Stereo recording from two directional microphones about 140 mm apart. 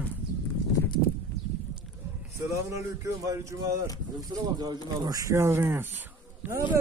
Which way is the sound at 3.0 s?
20° right (ahead or behind).